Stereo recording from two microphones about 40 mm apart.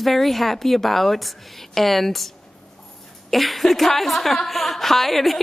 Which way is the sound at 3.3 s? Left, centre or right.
Centre.